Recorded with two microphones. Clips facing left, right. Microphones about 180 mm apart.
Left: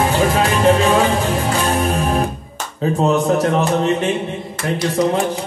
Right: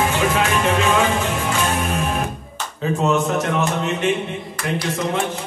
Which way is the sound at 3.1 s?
35° left (ahead or behind).